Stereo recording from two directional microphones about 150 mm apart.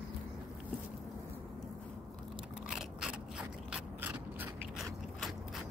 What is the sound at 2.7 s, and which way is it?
Mechanisms, 5° right (ahead or behind).